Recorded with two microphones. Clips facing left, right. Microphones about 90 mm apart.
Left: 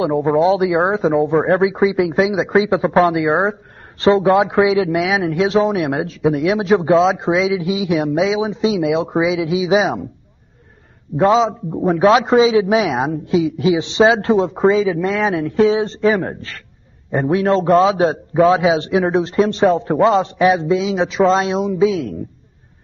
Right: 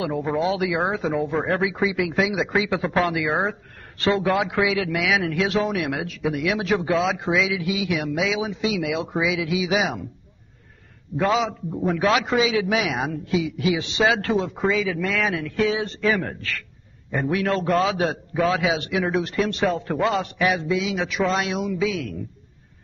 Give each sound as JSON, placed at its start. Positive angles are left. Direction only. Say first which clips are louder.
{"t": 0.0, "sound": "a man's voice", "louder": "left 9 dB", "side_deg": 30}
{"t": 11.1, "sound": "a man's voice", "louder": "left 8 dB", "side_deg": 25}